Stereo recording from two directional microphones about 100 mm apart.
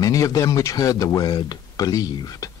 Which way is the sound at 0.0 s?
35° left (ahead or behind).